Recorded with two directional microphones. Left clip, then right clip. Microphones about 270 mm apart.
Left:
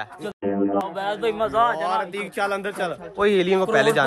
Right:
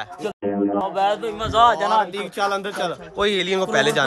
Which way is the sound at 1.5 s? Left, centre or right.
Centre.